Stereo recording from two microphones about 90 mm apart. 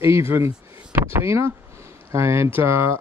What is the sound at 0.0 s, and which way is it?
Speech, 30° right (ahead or behind).